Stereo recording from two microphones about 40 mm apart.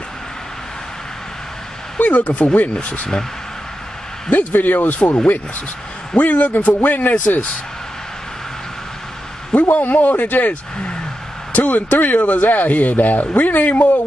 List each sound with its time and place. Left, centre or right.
2.0 s speech: left
2.7 s speech: left
4.3 s speech: left
9.5 s speech: left